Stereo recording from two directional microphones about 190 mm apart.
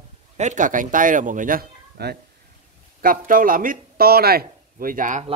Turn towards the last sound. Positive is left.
turn(degrees=-45)  # may be behind; listen again after turning